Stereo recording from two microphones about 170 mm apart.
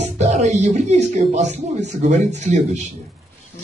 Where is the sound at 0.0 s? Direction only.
40° right (ahead or behind).